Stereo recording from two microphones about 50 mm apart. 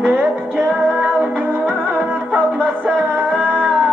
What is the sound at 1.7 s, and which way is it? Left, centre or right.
Music, right.